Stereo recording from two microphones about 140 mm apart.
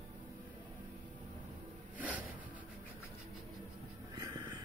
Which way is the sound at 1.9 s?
10° right (ahead or behind).